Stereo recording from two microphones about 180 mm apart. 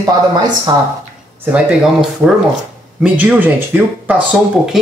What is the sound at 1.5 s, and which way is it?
Speech, 5° right (ahead or behind).